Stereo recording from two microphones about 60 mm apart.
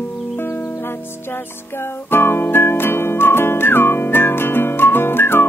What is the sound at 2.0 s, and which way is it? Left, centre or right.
Music, left.